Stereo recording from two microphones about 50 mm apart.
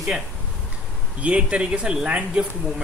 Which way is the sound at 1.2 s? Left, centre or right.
Right.